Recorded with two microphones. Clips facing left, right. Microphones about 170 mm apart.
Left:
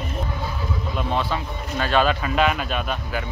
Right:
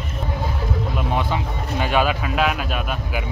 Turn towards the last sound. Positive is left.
turn(degrees=-5)  # may be behind; listen again after turning